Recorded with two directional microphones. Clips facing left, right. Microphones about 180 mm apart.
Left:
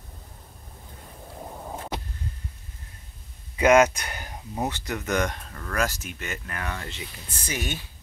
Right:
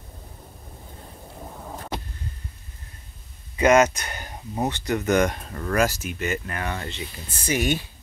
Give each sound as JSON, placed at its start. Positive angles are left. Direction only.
{"t": 3.5, "sound": "speech", "side_deg": 10}
{"t": 5.5, "sound": "speech", "side_deg": -20}
{"t": 5.8, "sound": "speech", "side_deg": -10}
{"t": 7.4, "sound": "speech", "side_deg": -10}